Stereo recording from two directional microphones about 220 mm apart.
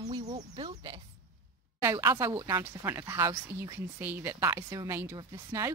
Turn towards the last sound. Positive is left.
turn(degrees=-15)  # may be behind; listen again after turning